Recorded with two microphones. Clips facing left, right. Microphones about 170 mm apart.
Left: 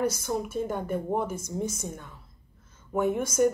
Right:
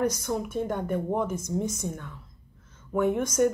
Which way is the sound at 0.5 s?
5° left (ahead or behind).